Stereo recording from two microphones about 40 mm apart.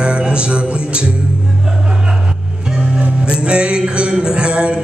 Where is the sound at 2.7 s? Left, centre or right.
Centre.